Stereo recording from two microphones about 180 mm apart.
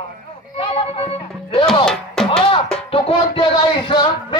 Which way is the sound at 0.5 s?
30° left (ahead or behind).